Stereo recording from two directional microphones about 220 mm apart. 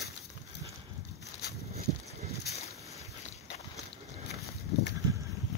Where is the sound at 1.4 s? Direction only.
45° left (ahead or behind).